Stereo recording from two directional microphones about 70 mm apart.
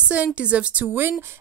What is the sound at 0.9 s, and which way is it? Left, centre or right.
Speech, right.